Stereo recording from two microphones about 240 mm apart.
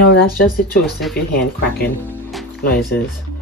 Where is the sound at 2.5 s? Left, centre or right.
Left.